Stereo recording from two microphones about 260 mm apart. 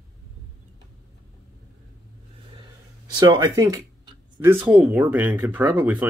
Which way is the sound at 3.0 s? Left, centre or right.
Centre.